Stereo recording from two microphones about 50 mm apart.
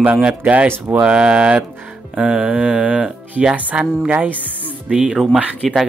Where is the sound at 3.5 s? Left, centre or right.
Right.